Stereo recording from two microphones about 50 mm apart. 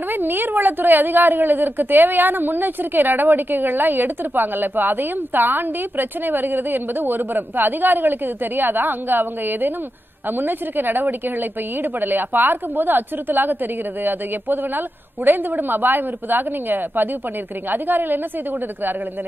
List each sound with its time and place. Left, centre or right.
0.1 s a woman's voice: right